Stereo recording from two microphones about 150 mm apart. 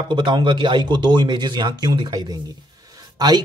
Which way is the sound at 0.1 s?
30° right (ahead or behind).